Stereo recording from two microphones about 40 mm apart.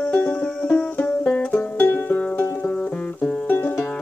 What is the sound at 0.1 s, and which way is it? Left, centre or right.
Music, left.